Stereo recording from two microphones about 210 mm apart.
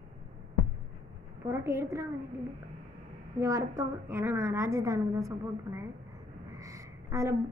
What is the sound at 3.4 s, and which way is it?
A woman's voice, 15° right (ahead or behind).